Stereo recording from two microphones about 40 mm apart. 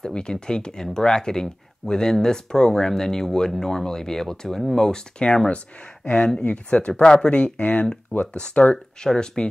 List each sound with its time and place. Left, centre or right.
0.0 s speech: centre
6.0 s speech: left
8.1 s speech: left
9.0 s speech: centre